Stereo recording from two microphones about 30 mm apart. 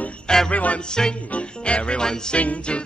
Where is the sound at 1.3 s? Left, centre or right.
Left.